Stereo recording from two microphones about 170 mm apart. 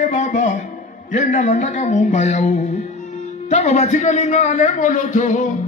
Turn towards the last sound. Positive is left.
turn(degrees=50)  # may be behind; listen again after turning